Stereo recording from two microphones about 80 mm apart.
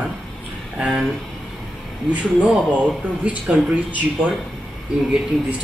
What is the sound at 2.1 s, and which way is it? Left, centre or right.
Speech, centre.